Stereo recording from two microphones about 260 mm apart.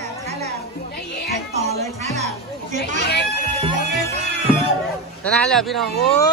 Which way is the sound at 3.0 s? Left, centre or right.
Left.